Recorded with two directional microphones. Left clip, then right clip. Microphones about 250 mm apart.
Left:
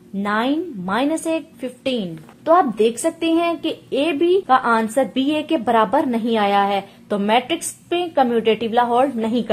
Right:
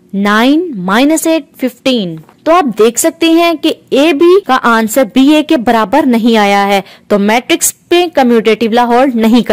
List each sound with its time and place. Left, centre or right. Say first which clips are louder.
0.2 s a woman's voice: right 11 dB; right